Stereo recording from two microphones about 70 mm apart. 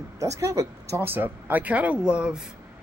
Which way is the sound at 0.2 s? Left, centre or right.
Right.